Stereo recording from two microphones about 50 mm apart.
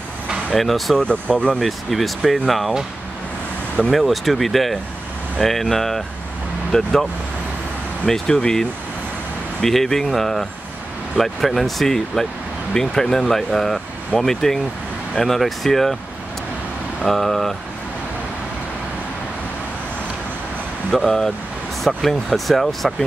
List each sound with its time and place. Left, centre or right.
0.5 s speech: centre
0.9 s speech: left
1.5 s speech: centre
3.9 s speech: centre
8.1 s speech: centre
17.0 s speech: centre
20.9 s speech: centre